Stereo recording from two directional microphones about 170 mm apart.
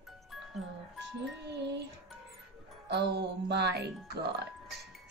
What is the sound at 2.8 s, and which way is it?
Music, 80° right.